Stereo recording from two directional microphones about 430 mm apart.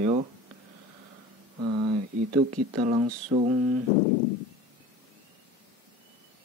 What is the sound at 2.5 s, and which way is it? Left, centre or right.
A man's voice, centre.